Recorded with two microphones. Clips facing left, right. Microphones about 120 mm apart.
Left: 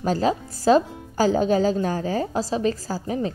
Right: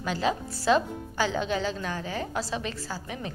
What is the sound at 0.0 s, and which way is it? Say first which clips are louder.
Speech: left 6 dB; 40° left (ahead or behind).